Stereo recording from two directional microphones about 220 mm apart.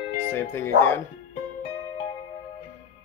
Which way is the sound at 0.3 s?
10° left (ahead or behind).